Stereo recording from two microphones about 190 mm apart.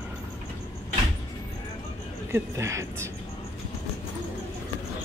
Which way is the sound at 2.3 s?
15° right (ahead or behind).